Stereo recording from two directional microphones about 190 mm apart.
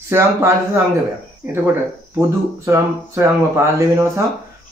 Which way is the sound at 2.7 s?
15° right (ahead or behind).